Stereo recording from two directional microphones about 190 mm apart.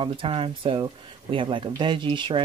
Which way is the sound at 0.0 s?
25° right (ahead or behind).